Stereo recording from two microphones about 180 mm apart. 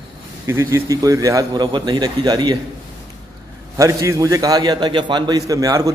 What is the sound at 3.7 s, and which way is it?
A man's voice, 20° right (ahead or behind).